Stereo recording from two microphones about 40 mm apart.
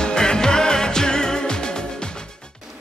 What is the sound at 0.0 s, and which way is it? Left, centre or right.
Music, centre.